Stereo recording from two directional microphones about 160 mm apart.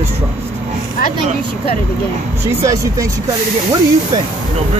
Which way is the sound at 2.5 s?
20° right (ahead or behind).